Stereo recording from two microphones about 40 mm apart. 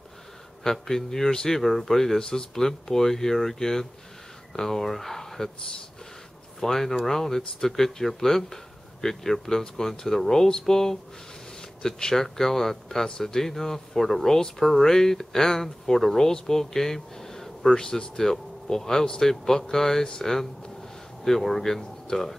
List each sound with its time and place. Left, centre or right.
0.7 s speech: centre
6.6 s speech: centre